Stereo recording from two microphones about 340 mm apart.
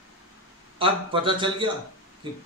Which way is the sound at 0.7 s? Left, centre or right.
Centre.